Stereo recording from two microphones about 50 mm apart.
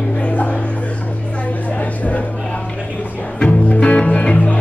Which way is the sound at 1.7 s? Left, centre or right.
Left.